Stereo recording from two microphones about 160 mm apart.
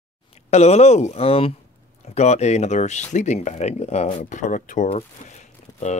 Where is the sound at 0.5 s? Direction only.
45° left (ahead or behind).